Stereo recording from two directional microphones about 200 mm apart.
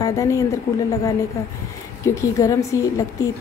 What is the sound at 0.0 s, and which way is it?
Speech, 15° left (ahead or behind).